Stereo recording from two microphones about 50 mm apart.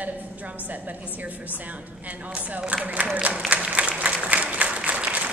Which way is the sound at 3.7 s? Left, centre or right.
Right.